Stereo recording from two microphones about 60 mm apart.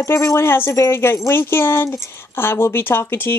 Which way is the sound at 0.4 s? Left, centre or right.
Left.